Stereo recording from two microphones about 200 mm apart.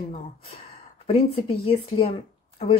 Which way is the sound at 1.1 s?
30° left (ahead or behind).